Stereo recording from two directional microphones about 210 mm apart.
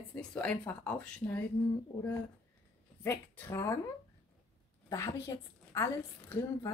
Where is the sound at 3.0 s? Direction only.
10° left (ahead or behind).